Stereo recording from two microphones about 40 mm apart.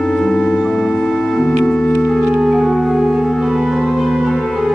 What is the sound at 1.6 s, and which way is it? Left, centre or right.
Music, left.